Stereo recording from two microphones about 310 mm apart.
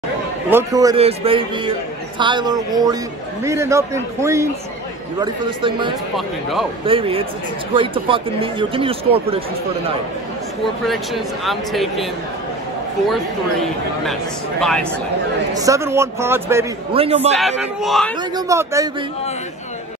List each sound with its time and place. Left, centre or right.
0.5 s a man's voice: centre
10.9 s speech: centre
14.6 s speech: centre
15.5 s a man's voice: centre
17.4 s a man's voice: centre